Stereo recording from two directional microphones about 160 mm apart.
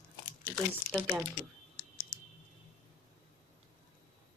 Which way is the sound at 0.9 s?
5° right (ahead or behind).